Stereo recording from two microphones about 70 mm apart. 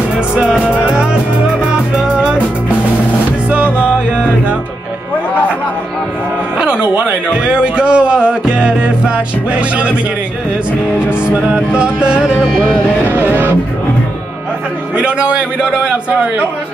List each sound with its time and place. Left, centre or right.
0.4 s music: centre
1.7 s music: centre
6.6 s speech: centre
7.4 s music: centre
11.2 s music: centre
12.5 s speech: centre
13.0 s speech: right
15.0 s music: centre